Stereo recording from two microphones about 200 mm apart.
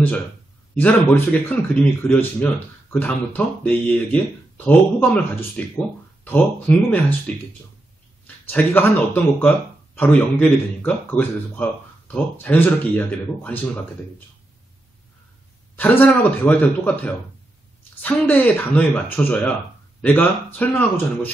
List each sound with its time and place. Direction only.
0.7 s a man's voice: 10° left (ahead or behind)
8.5 s a man's voice: 10° left (ahead or behind)
15.7 s a man's voice: 10° left (ahead or behind)